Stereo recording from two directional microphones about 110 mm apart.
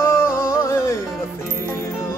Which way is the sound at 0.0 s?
25° left (ahead or behind).